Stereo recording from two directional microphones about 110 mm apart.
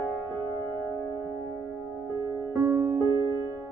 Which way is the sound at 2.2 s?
20° right (ahead or behind).